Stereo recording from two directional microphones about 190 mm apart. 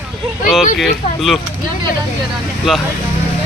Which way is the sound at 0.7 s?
Centre (ahead or behind).